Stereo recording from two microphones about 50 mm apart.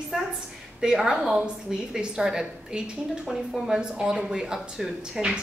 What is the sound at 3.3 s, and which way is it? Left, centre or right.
A woman's voice, centre.